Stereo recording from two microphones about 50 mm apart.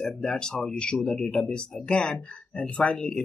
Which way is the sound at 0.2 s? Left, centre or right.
Centre.